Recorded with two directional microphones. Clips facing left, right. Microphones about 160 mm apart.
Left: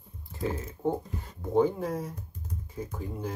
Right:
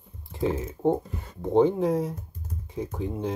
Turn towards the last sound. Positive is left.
turn(degrees=-25)  # may be behind; listen again after turning